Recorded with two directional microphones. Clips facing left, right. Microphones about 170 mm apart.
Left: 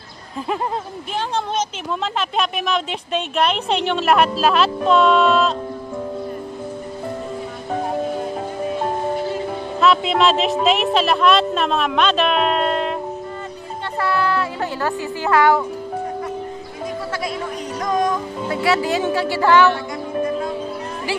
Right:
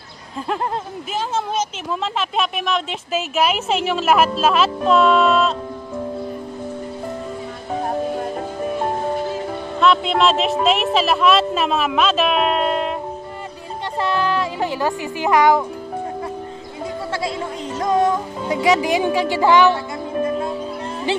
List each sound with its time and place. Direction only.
1.3 s a woman's voice: 5° right (ahead or behind)
9.8 s a woman's voice: centre (ahead or behind)
13.9 s speech: 20° right (ahead or behind)
17.7 s music: 25° right (ahead or behind)